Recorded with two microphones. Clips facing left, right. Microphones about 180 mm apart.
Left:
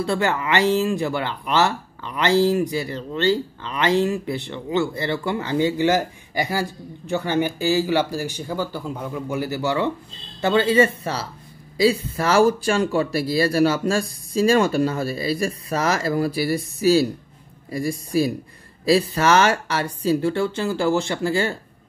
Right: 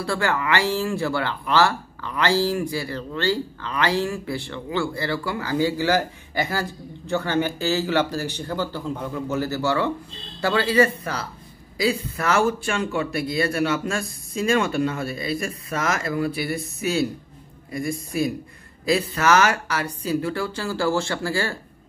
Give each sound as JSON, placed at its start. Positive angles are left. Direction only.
{"t": 0.0, "sound": "speech", "side_deg": 20}